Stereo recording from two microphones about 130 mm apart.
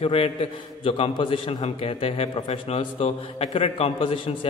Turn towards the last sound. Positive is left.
turn(degrees=45)  # may be behind; listen again after turning